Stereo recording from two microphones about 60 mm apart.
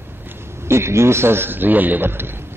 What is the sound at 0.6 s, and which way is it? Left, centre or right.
A man's voice, right.